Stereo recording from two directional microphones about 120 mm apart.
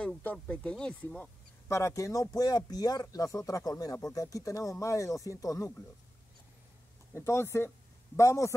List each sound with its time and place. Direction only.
0.0 s speech: 10° left (ahead or behind)
1.7 s speech: 25° left (ahead or behind)
7.2 s speech: 25° left (ahead or behind)